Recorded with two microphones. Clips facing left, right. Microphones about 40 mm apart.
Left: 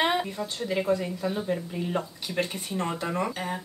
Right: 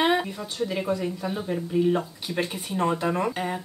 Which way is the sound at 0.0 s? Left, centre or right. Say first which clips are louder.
Right 3 dB; centre.